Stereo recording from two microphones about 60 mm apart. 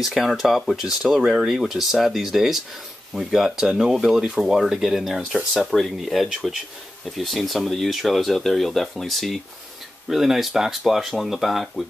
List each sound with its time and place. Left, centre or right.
0.0 s speech: centre